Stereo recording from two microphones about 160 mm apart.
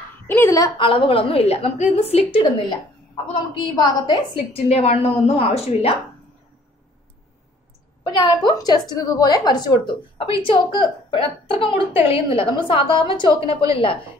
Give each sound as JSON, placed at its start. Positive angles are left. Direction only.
{"t": 0.3, "sound": "a woman's voice", "side_deg": 15}
{"t": 0.8, "sound": "speech", "side_deg": 35}
{"t": 8.1, "sound": "a woman's voice", "side_deg": 30}